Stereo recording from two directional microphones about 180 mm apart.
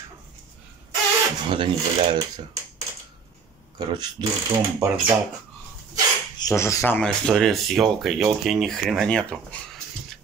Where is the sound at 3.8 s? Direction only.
25° right (ahead or behind).